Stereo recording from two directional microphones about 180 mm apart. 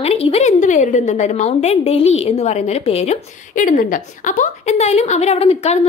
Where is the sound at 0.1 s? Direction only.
35° left (ahead or behind).